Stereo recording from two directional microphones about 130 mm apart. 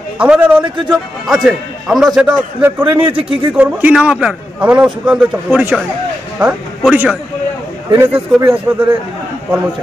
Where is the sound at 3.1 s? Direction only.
45° right (ahead or behind).